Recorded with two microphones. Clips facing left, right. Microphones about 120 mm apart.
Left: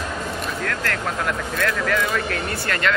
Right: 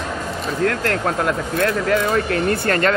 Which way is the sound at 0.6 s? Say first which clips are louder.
Right 8 dB; 30° right (ahead or behind).